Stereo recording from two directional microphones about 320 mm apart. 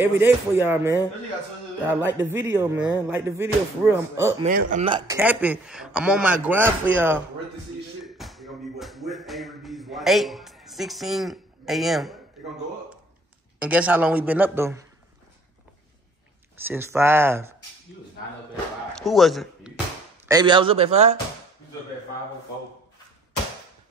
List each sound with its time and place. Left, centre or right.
0.0 s speech: centre
4.5 s speech: right; by 7.2 s centre
8.0 s a sound: centre
13.6 s speech: centre
16.6 s speech: centre
18.9 s a man's voice: centre
20.2 s speech: centre